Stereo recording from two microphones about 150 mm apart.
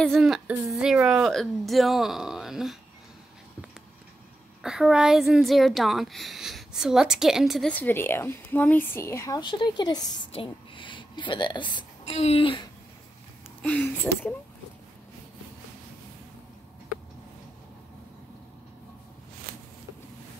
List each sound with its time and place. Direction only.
0.0 s a woman's voice: centre (ahead or behind)
4.6 s a woman's voice: 5° right (ahead or behind)
7.7 s speech: 15° left (ahead or behind)
9.4 s a woman's voice: 30° left (ahead or behind)
12.1 s speech: 45° left (ahead or behind)
13.6 s speech: 10° left (ahead or behind)